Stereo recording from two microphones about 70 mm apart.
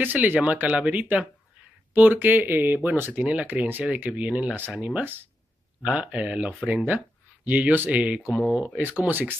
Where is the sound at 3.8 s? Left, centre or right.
Centre.